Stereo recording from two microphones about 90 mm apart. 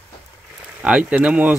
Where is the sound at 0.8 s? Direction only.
10° right (ahead or behind).